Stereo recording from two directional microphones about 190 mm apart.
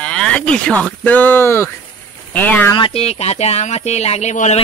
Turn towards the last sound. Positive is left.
turn(degrees=40)  # may be behind; listen again after turning